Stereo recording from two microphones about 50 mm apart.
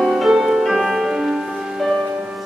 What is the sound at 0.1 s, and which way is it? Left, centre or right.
Music, centre.